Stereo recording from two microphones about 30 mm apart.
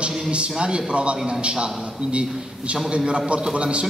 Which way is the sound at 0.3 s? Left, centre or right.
Right.